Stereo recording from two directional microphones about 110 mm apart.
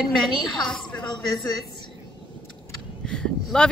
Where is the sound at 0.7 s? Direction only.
5° left (ahead or behind).